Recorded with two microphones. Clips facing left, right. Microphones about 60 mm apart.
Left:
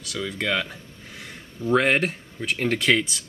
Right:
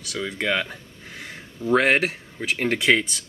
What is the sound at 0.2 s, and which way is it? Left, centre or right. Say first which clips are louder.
Speech: right 1 dB; centre.